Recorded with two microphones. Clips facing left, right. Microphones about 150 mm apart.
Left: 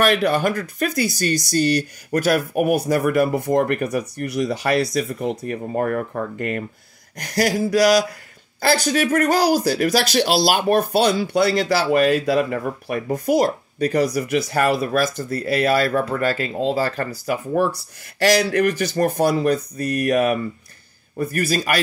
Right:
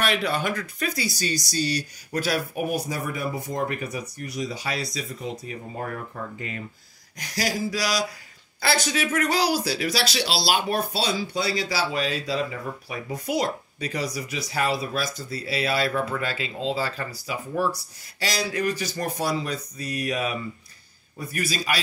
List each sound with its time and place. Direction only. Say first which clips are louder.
0.0 s speech: left 7 dB; 50° left (ahead or behind)
18.2 s speech: left 9 dB; 65° left (ahead or behind)